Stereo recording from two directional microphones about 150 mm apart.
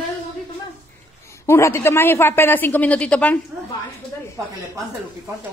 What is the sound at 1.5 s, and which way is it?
A woman's voice, 20° left (ahead or behind).